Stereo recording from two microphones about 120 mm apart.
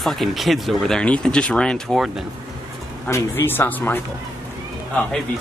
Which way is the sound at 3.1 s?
20° left (ahead or behind).